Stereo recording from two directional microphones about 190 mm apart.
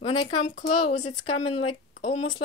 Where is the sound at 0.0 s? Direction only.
25° left (ahead or behind).